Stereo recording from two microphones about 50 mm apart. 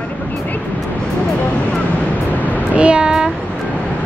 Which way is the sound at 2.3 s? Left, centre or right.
Left.